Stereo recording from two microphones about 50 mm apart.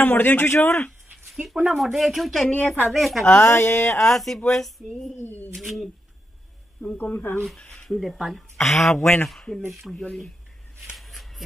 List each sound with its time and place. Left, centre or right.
0.0 s speech: left
1.3 s speech: centre
3.3 s speech: left
3.5 s speech: left
4.0 s speech: centre
5.2 s speech: left
5.5 s speech: centre
7.0 s speech: left
7.5 s speech: centre
9.7 s speech: centre
11.0 s a sound: centre